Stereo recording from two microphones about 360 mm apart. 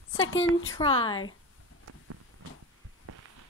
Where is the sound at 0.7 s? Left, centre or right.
Centre.